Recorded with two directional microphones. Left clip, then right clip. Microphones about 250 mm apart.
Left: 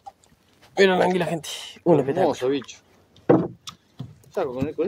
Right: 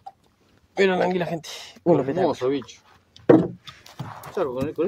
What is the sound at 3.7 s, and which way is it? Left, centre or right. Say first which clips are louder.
Horse: left 3 dB; left.